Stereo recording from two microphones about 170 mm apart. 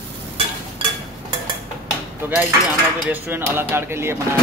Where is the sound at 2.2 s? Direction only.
10° right (ahead or behind).